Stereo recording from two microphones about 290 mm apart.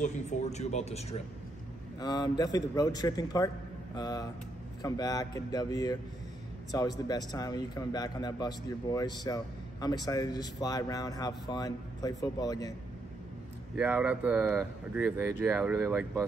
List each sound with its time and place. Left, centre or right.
0.0 s a man's voice: left
13.7 s speech: centre